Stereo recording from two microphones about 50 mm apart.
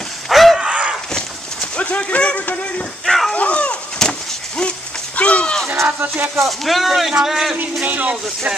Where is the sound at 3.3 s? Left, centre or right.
Left.